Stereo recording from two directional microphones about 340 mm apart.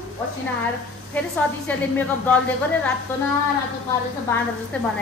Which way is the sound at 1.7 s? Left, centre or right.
Centre.